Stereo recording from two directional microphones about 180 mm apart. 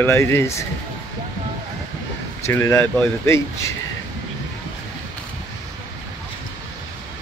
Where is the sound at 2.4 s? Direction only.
15° left (ahead or behind).